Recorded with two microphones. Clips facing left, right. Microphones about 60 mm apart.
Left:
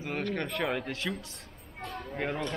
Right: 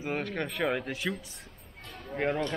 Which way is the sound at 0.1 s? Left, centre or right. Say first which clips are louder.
Left 1 dB; centre.